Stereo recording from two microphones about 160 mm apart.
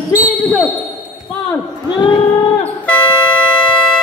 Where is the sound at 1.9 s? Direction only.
30° left (ahead or behind).